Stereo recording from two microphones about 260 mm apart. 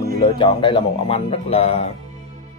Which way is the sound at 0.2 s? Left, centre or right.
Centre.